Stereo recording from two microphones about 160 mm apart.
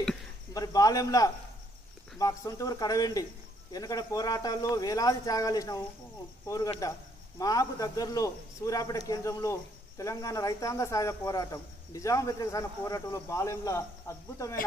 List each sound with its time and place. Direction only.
0.6 s a man's voice: 20° left (ahead or behind)
6.4 s cricket: 20° left (ahead or behind)
7.3 s a man's voice: 20° left (ahead or behind)